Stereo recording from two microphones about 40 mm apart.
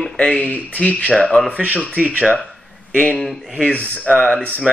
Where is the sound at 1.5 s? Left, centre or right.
Right.